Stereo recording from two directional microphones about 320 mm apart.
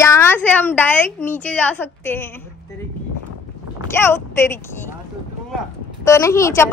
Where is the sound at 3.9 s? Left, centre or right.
Centre.